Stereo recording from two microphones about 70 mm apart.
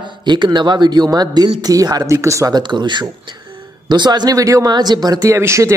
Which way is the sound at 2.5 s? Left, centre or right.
Right.